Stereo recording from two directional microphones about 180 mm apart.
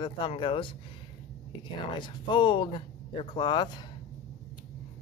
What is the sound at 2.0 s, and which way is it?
Speech, 25° left (ahead or behind).